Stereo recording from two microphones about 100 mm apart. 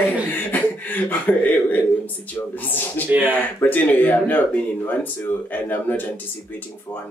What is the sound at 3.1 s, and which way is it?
Speech, 15° right (ahead or behind).